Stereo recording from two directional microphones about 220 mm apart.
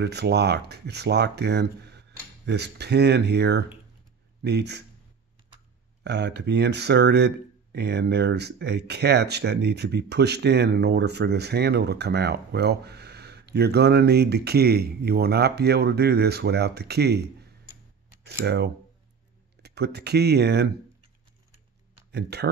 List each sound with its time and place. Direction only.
0.0 s speech: 50° right (ahead or behind)
6.0 s speech: 50° right (ahead or behind)
22.1 s speech: 50° right (ahead or behind)